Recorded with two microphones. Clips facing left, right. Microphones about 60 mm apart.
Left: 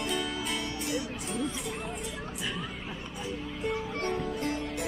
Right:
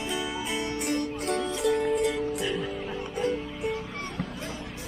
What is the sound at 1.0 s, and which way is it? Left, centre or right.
Music, right.